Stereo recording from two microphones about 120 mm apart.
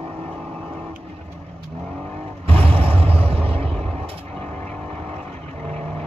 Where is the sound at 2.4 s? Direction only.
55° right (ahead or behind).